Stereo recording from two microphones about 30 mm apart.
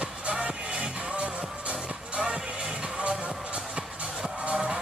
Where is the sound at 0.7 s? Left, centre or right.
Right.